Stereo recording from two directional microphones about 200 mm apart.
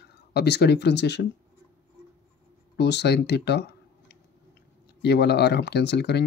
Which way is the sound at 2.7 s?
60° left (ahead or behind).